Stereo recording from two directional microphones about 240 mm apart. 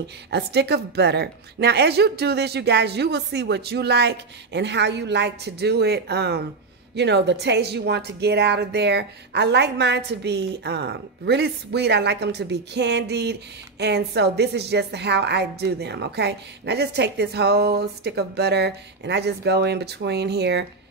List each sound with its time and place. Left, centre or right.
0.3 s a woman's voice: right